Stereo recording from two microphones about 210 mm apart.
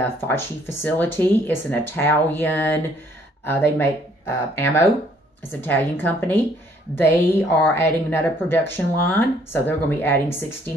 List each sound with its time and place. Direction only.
0.0 s a woman's voice: 10° left (ahead or behind)